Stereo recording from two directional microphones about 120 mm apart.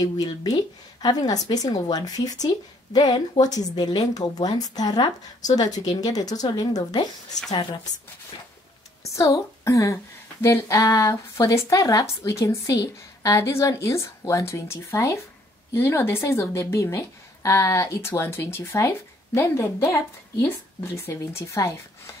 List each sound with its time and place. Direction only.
0.0 s speech: 30° left (ahead or behind)
9.0 s a woman's voice: 25° left (ahead or behind)